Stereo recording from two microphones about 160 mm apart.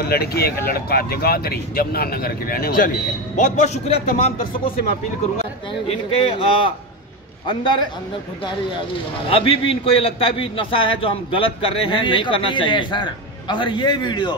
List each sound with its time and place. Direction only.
0.0 s speech: 80° left
3.3 s a man's voice: 50° left (ahead or behind)
5.9 s a man's voice: 35° left (ahead or behind)
9.3 s a man's voice: 35° left (ahead or behind)